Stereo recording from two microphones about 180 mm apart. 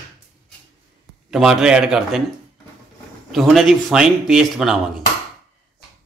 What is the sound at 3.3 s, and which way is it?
A man's voice, centre (ahead or behind).